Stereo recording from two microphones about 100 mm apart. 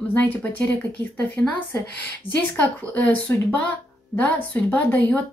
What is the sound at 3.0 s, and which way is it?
Speech, 15° left (ahead or behind).